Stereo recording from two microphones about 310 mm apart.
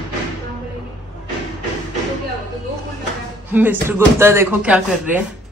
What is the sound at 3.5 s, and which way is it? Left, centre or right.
Speech, centre.